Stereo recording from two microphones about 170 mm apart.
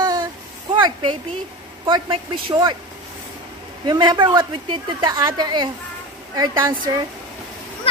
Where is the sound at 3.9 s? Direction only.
25° right (ahead or behind).